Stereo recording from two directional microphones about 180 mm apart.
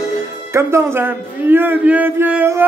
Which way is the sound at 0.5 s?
15° right (ahead or behind).